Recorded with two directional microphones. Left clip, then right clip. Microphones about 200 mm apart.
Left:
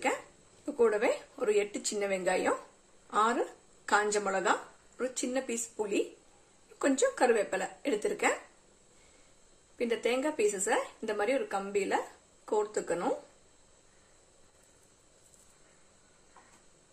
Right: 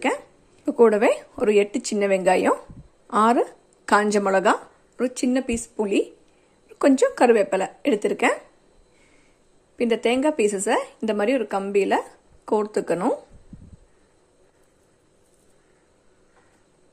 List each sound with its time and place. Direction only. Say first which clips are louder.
0.7 s speech: right 11 dB; 40° right (ahead or behind)
9.8 s speech: right 9 dB; 40° right (ahead or behind)